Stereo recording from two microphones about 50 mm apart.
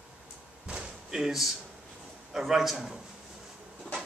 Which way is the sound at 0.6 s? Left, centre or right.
Right.